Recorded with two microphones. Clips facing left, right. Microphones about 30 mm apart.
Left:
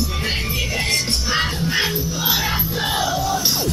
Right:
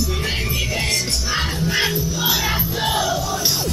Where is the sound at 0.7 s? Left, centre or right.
Left.